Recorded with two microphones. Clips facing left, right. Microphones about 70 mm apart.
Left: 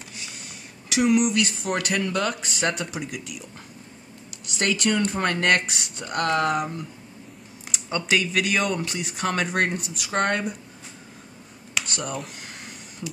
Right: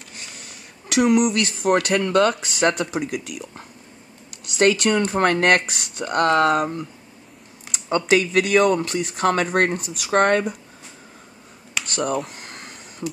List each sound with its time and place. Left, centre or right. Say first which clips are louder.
0.8 s speech: right 3 dB; right
2.1 s speech: right 8 dB; right
4.5 s speech: right 6 dB; right
7.9 s speech: right 6 dB; right
10.0 s speech: right 7 dB; right
12.4 s a sound: right 2 dB; right